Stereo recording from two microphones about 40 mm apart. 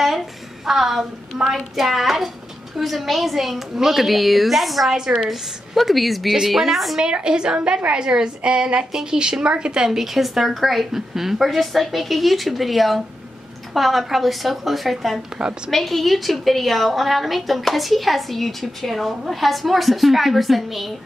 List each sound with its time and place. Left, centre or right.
0.7 s a woman's voice: centre
7.0 s a woman's voice: right
9.8 s a woman's voice: centre